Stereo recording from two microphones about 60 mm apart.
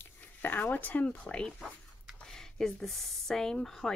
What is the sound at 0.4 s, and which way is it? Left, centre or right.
Speech, left.